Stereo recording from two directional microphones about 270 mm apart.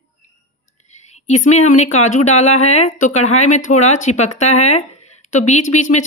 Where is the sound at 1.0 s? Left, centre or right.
Left.